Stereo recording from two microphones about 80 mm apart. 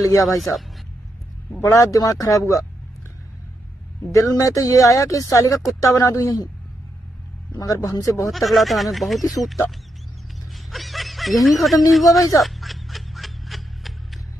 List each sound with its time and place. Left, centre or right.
0.0 s speech: left
0.4 s speech: centre
1.6 s speech: left
4.1 s speech: left
7.5 s speech: left
8.3 s speech: centre
12.4 s a sound: centre